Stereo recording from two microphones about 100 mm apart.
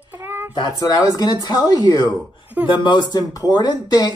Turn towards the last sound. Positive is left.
turn(degrees=40)  # may be behind; listen again after turning